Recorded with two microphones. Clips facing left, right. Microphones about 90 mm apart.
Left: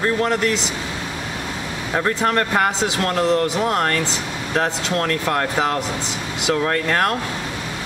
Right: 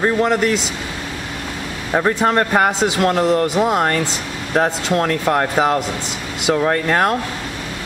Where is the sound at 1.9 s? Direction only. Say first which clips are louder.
Right 4 dB; 20° right (ahead or behind).